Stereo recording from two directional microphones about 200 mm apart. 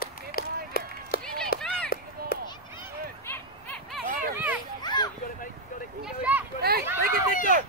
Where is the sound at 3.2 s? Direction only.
10° left (ahead or behind).